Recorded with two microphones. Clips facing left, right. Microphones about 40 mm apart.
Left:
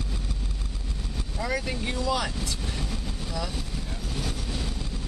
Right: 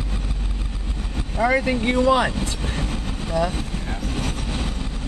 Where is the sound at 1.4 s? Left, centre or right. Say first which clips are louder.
Right 10 dB; right.